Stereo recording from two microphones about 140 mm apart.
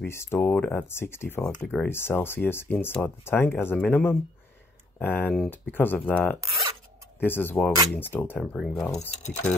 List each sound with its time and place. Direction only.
0.0 s speech: 15° left (ahead or behind)
8.4 s speech: centre (ahead or behind)
9.1 s speech: 55° left (ahead or behind)